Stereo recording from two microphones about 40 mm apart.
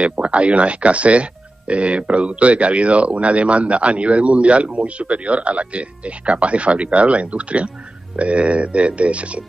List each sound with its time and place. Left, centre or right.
0.0 s speech: right